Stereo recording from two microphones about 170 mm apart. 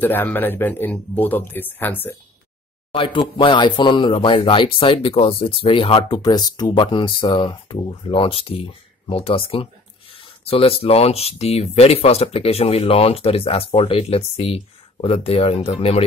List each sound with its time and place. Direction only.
0.0 s speech: 10° left (ahead or behind)
2.9 s speech: 30° left (ahead or behind)